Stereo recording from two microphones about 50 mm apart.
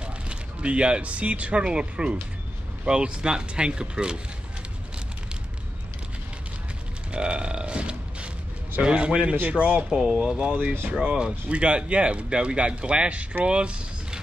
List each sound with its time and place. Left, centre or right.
0.0 s speech: right
7.1 s a sound: centre
8.8 s speech: right
10.5 s speech: right
13.5 s vehicle: right